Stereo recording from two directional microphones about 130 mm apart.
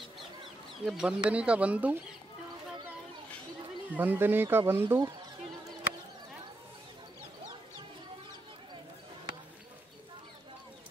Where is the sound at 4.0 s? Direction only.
15° right (ahead or behind).